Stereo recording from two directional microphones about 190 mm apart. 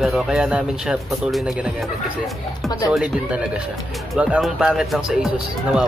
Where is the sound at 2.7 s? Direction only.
20° left (ahead or behind).